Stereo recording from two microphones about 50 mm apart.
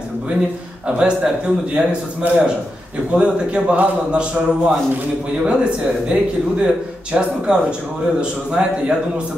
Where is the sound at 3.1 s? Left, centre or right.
Right.